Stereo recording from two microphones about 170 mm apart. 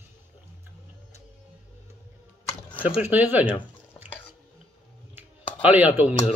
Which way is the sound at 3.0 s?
10° right (ahead or behind).